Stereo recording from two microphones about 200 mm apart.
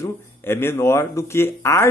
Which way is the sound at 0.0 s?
10° left (ahead or behind).